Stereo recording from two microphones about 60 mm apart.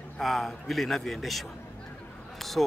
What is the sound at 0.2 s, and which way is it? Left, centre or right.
Speech, centre.